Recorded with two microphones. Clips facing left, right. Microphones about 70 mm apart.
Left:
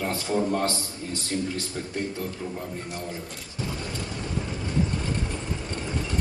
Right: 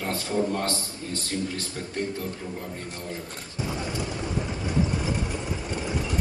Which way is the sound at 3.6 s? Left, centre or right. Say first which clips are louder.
Right 3 dB; centre.